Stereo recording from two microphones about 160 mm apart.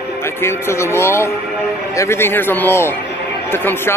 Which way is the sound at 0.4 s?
15° left (ahead or behind).